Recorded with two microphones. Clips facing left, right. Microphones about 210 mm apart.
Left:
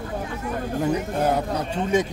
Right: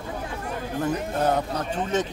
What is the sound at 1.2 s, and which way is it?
Speech, 10° left (ahead or behind).